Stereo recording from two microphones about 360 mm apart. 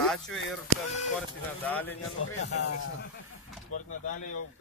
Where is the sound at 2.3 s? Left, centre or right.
Left.